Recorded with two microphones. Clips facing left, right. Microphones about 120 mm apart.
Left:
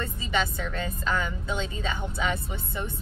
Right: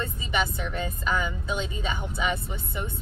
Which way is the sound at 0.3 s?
20° right (ahead or behind).